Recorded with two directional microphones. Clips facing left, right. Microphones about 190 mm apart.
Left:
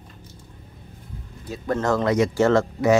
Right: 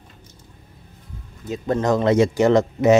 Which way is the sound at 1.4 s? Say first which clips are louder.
Right 3 dB; 20° right (ahead or behind).